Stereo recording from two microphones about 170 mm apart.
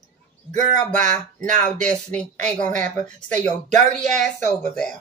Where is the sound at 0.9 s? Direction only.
45° right (ahead or behind).